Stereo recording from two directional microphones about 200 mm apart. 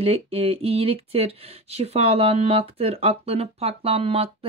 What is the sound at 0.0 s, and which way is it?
Speech, 30° right (ahead or behind).